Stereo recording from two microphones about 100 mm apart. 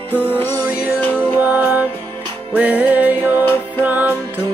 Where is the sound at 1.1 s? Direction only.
15° right (ahead or behind).